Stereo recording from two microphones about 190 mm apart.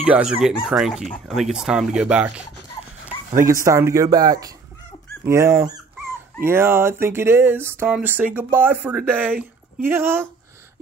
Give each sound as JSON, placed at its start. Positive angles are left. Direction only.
{"t": 0.0, "sound": "speech", "side_deg": -5}
{"t": 3.1, "sound": "dog", "side_deg": -10}
{"t": 3.6, "sound": "speech", "side_deg": -15}